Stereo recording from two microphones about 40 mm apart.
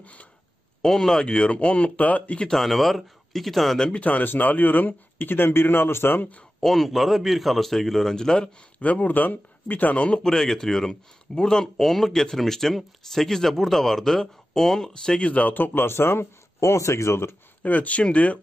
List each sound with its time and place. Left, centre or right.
0.0 s speech: left
0.8 s speech: centre; by 2.4 s left
2.5 s a man's voice: centre
3.9 s speech: left
6.6 s a man's voice: centre
8.1 s speech: centre
8.7 s speech: left
10.2 s speech: centre
15.1 s speech: left
15.7 s speech: left
17.6 s speech: left